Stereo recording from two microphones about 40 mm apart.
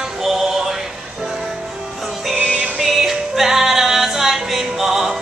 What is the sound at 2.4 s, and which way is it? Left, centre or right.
Music, right.